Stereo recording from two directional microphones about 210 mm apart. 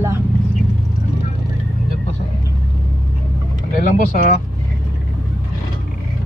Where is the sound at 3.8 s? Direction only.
40° left (ahead or behind).